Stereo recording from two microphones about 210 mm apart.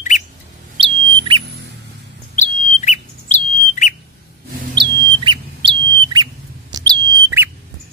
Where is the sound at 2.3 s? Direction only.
35° left (ahead or behind).